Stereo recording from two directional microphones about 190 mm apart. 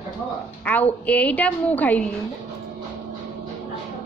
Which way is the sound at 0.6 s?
10° left (ahead or behind).